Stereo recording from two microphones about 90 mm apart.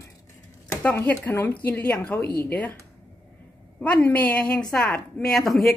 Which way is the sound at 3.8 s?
15° left (ahead or behind).